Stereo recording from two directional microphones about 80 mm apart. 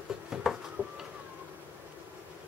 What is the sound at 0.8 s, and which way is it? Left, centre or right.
Printer, right.